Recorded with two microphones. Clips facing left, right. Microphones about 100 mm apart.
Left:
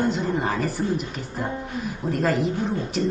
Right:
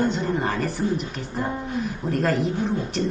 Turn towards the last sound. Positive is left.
turn(degrees=0)  # may be behind; listen again after turning